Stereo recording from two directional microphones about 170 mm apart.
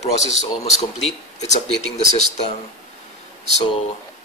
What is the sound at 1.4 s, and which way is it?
Speech, 40° left (ahead or behind).